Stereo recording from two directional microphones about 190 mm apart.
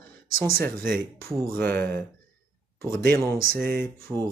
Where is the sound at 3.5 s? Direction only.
50° right (ahead or behind).